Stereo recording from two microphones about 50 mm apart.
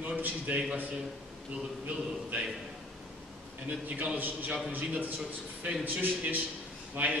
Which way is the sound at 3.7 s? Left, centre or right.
Right.